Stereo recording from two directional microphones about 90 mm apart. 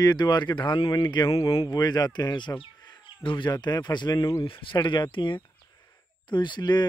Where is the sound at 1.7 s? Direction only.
45° left (ahead or behind).